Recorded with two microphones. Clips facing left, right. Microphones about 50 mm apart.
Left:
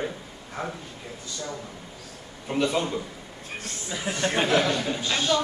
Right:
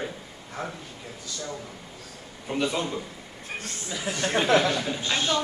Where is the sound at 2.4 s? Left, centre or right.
Centre.